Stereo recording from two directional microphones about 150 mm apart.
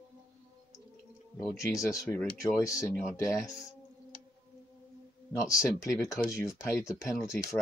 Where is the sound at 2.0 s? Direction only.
15° left (ahead or behind).